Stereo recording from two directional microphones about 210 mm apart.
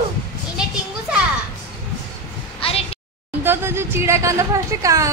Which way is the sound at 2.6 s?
30° left (ahead or behind).